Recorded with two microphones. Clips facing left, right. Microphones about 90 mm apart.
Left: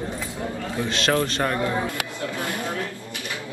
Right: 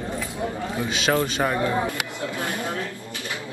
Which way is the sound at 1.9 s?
20° right (ahead or behind).